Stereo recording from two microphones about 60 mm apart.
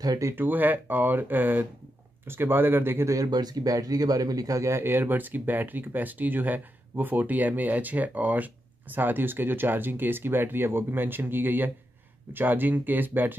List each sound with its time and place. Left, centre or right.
0.0 s speech: right
0.4 s speech: right
3.1 s speech: right